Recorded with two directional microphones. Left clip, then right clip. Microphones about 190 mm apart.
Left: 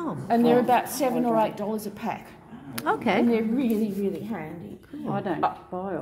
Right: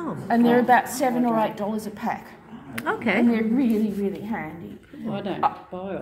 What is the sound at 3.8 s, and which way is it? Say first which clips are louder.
Speech: right 1 dB; 65° left (ahead or behind).